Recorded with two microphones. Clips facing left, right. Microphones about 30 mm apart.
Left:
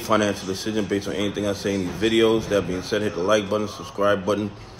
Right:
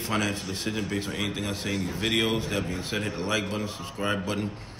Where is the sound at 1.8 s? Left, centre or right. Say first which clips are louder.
Left 7 dB; left.